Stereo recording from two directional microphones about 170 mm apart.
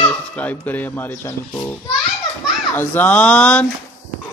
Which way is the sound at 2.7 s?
10° left (ahead or behind).